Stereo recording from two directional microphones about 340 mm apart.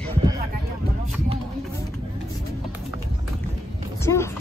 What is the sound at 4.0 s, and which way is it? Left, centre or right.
Speech, centre.